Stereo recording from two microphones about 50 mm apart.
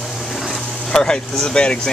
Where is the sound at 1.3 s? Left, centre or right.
Centre.